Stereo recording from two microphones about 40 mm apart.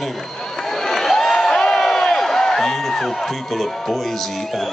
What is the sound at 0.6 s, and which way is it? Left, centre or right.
Crowd, centre.